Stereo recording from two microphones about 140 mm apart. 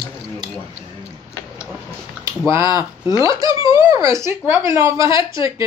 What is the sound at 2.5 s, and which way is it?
Speech, 20° right (ahead or behind).